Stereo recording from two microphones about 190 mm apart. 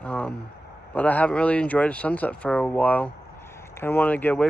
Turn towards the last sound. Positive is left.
turn(degrees=10)  # may be behind; listen again after turning